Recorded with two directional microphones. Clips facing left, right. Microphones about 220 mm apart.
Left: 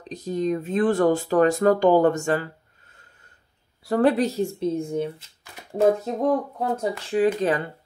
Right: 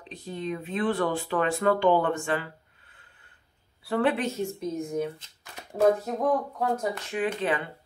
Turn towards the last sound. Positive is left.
turn(degrees=40)  # may be behind; listen again after turning